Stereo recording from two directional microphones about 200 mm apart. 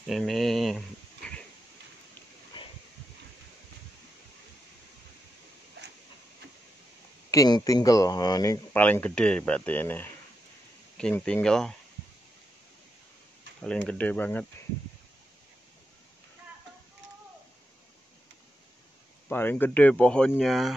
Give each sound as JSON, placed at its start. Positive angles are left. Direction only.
{"t": 0.0, "sound": "speech", "side_deg": 0}
{"t": 2.5, "sound": "a sound", "side_deg": 25}
{"t": 5.8, "sound": "a sound", "side_deg": -55}
{"t": 7.2, "sound": "speech", "side_deg": 20}
{"t": 13.8, "sound": "speech", "side_deg": 5}
{"t": 19.2, "sound": "speech", "side_deg": 10}